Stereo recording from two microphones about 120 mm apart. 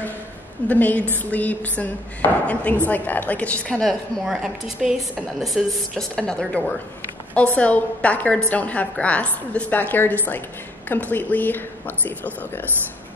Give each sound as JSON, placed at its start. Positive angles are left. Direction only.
{"t": 0.7, "sound": "a woman's voice", "side_deg": 15}
{"t": 4.3, "sound": "a woman's voice", "side_deg": -5}